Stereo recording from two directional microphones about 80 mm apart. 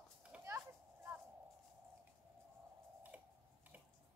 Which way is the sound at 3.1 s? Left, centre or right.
Centre.